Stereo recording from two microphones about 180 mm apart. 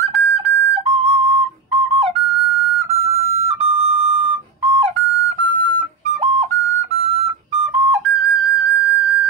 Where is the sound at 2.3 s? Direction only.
Centre (ahead or behind).